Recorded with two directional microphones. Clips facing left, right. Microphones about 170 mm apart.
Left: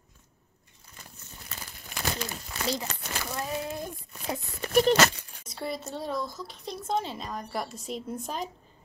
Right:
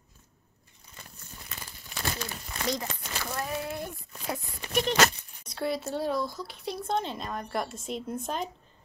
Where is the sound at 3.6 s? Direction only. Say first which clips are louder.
Even; 20° left (ahead or behind).